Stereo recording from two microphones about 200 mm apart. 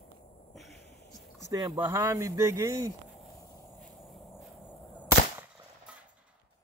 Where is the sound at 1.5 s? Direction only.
15° right (ahead or behind).